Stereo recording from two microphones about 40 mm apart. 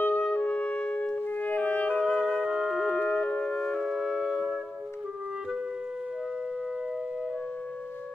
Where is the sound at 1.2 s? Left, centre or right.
Left.